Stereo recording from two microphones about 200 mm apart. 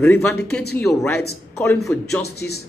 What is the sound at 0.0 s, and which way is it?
Speech, 10° left (ahead or behind).